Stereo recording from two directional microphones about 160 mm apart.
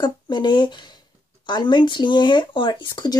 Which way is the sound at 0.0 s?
25° left (ahead or behind).